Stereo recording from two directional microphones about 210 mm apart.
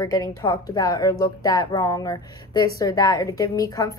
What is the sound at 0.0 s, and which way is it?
A woman's voice, 15° left (ahead or behind).